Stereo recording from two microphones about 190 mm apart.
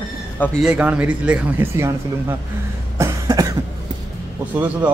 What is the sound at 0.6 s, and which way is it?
Speech, 5° right (ahead or behind).